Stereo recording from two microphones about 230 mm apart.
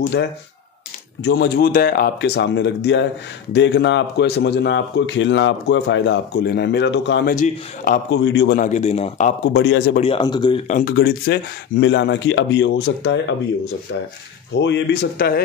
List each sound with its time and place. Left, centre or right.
1.2 s a man's voice: left
7.3 s a man's voice: left
8.5 s a man's voice: left
9.5 s a man's voice: left
9.9 s speech: left
10.7 s a man's voice: left
14.5 s a man's voice: left